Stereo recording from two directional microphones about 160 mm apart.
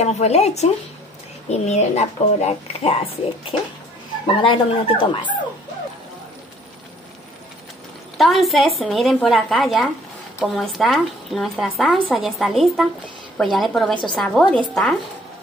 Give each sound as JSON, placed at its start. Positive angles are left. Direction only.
{"t": 0.0, "sound": "a woman's voice", "side_deg": 45}
{"t": 4.4, "sound": "a woman's voice", "side_deg": 35}
{"t": 8.2, "sound": "a woman's voice", "side_deg": 0}